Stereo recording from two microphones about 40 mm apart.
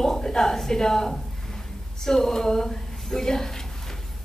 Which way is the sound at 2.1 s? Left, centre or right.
Centre.